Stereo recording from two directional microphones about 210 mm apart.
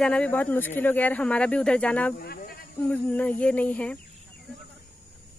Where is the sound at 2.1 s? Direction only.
45° left (ahead or behind).